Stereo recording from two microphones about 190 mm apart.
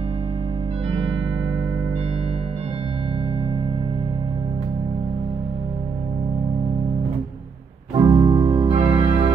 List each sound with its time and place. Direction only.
8.0 s keyboard: 25° right (ahead or behind)